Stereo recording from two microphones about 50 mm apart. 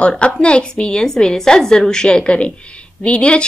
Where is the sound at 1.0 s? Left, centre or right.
Centre.